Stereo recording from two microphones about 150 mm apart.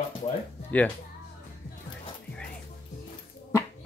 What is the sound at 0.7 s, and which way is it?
Speech, 10° left (ahead or behind).